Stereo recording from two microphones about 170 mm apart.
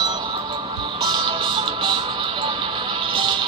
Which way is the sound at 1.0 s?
25° right (ahead or behind).